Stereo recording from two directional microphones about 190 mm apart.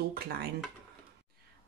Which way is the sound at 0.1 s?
55° right (ahead or behind).